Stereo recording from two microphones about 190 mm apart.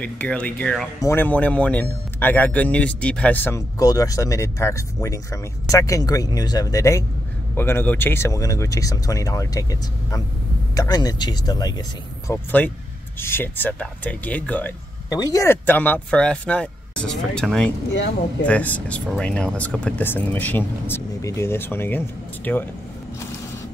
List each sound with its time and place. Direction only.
0.0 s speech: 5° left (ahead or behind)
12.3 s speech: 10° left (ahead or behind)
15.0 s speech: 20° left (ahead or behind)